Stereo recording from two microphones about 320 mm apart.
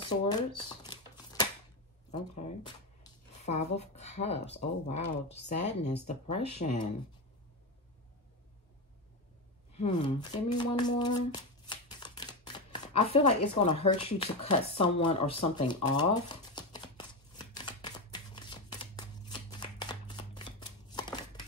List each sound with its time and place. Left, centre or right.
0.0 s a sound: centre
5.5 s speech: left
9.8 s speech: centre
17.6 s shuffling cards: centre